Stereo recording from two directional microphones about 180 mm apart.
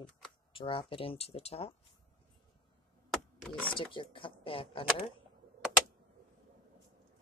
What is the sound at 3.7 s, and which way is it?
Speech, 30° left (ahead or behind).